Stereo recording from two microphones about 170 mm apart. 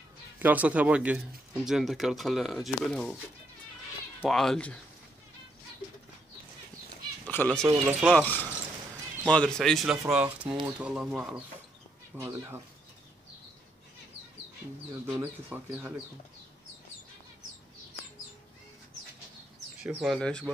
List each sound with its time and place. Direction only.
0.4 s speech: 10° right (ahead or behind)
4.2 s speech: centre (ahead or behind)
7.2 s speech: 10° left (ahead or behind)
7.8 s speech: 5° right (ahead or behind)
8.2 s speech: 10° left (ahead or behind)
12.2 s speech: 15° right (ahead or behind)
15.1 s speech: 10° right (ahead or behind)
19.8 s speech: 5° right (ahead or behind)